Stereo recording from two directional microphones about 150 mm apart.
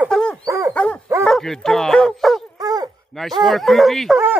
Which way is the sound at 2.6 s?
25° right (ahead or behind).